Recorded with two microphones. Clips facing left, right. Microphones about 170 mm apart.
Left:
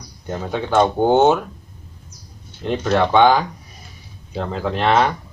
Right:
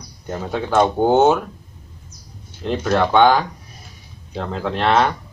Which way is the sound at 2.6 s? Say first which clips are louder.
Even; centre (ahead or behind).